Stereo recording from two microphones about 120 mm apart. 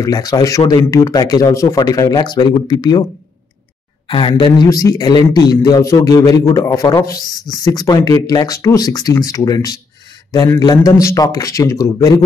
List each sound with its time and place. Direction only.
0.0 s speech: 30° left (ahead or behind)
4.1 s speech: 45° left (ahead or behind)
4.6 s a man's voice: 30° left (ahead or behind)